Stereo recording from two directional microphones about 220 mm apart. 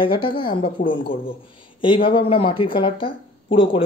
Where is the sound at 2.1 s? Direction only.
25° left (ahead or behind).